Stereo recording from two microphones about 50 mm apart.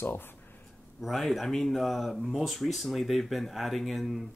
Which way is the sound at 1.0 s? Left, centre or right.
Centre.